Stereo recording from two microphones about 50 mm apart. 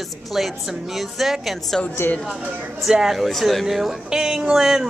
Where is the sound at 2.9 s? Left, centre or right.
Centre.